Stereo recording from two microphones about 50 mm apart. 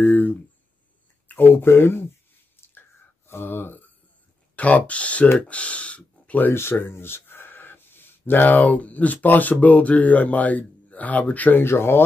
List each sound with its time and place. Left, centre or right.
0.0 s speech: left
3.3 s speech: left
4.6 s speech: left
6.5 s speech: left
11.6 s speech: left